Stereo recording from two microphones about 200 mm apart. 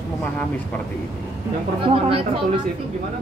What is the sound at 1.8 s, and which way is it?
Speech, 25° right (ahead or behind).